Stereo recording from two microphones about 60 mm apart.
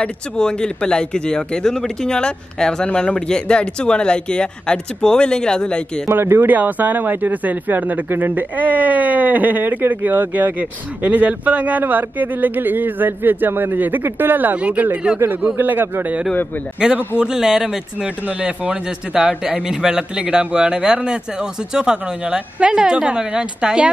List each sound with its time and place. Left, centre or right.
0.0 s speech: centre
6.0 s speech: right
14.6 s a man's voice: right
15.5 s speech: right
16.8 s a man's voice: centre